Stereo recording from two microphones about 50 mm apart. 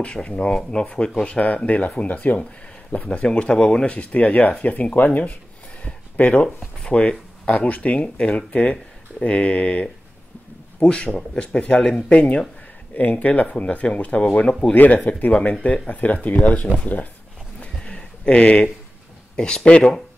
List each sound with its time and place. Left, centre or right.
0.0 s speech: left
2.9 s speech: left
8.3 s speech: centre
14.7 s speech: left
17.8 s a sound: left
19.3 s speech: centre